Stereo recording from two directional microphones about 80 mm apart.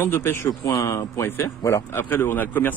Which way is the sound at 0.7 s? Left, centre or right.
Left.